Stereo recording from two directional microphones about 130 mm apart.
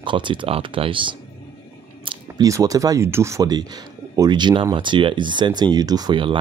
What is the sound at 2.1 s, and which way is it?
Speech, 30° right (ahead or behind).